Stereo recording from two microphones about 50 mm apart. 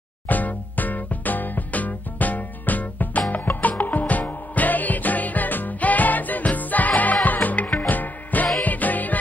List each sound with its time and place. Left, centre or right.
0.3 s music: left